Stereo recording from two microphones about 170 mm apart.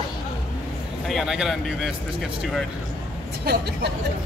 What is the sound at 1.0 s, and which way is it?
Speech, centre (ahead or behind).